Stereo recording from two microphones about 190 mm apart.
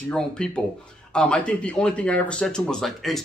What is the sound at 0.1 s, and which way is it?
Speech, 5° left (ahead or behind).